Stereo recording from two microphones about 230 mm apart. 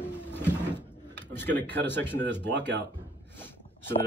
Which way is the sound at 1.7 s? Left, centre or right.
Centre.